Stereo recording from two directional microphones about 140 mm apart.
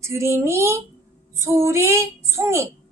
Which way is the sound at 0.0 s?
20° right (ahead or behind).